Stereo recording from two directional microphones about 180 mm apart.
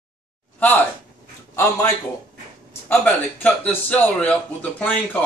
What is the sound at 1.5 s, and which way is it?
Speech, 15° left (ahead or behind).